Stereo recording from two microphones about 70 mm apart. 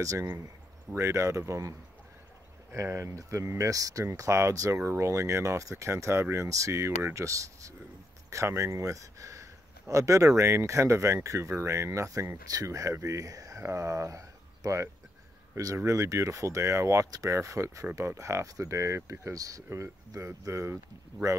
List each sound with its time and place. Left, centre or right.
0.0 s speech: right
21.1 s speech: right